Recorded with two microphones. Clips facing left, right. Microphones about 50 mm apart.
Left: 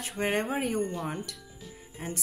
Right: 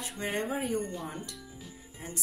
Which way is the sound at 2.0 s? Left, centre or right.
Left.